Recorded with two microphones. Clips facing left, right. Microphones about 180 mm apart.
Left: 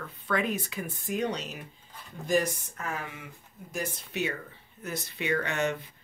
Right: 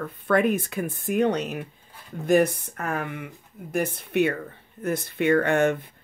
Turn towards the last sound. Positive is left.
turn(degrees=-55)  # may be behind; listen again after turning